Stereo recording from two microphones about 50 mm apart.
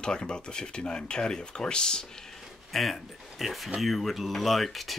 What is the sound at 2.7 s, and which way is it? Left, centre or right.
Speech, centre.